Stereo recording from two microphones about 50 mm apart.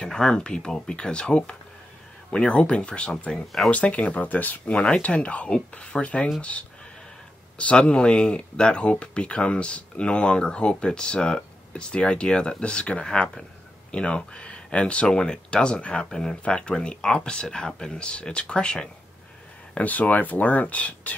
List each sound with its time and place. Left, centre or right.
0.0 s speech: centre
7.5 s speech: left
19.7 s speech: left